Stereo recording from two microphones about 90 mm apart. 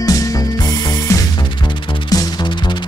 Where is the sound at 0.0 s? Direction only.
40° left (ahead or behind).